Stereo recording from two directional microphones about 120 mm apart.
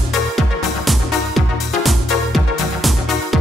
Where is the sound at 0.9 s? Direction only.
Centre (ahead or behind).